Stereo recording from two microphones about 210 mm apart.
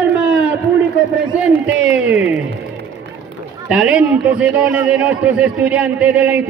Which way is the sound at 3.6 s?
5° right (ahead or behind).